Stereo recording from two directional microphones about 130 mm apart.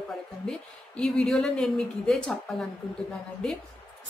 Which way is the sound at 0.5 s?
5° left (ahead or behind).